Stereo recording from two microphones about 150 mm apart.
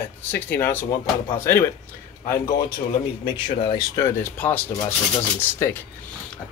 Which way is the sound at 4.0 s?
15° left (ahead or behind).